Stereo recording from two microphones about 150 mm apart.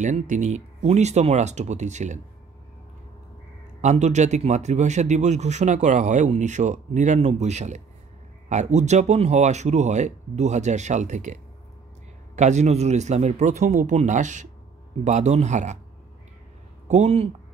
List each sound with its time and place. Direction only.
0.0 s speech: 55° right (ahead or behind)
3.8 s speech: 50° right (ahead or behind)
12.4 s speech: 50° right (ahead or behind)
16.8 s speech: 50° right (ahead or behind)